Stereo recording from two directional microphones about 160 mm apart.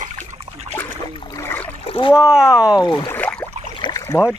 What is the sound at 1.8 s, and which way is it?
Splash, 35° left (ahead or behind).